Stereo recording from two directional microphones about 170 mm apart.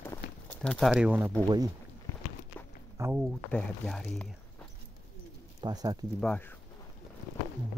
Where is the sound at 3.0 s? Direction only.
15° right (ahead or behind).